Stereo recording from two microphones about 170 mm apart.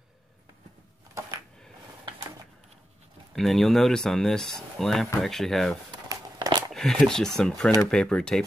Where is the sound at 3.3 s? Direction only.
Centre (ahead or behind).